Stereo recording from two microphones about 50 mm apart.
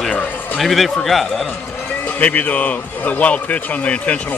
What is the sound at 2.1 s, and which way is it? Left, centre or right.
Speech, left.